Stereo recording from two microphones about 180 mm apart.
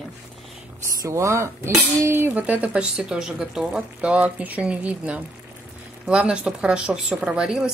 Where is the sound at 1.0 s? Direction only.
15° right (ahead or behind).